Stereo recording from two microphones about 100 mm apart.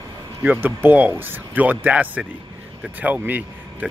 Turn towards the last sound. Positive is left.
turn(degrees=-15)  # may be behind; listen again after turning